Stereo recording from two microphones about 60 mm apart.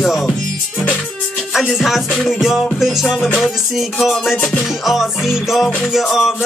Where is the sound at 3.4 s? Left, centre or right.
Centre.